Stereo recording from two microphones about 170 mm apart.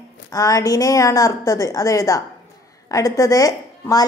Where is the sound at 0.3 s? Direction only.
20° left (ahead or behind).